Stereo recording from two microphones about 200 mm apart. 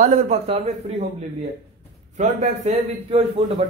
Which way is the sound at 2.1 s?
30° right (ahead or behind).